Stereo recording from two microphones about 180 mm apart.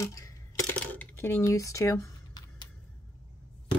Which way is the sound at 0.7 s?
10° left (ahead or behind).